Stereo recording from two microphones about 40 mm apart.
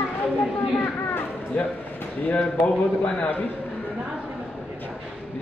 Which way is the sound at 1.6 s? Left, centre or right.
Left.